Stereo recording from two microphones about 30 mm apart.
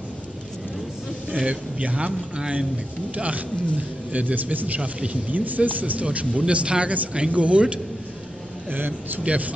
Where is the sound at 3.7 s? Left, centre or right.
Right.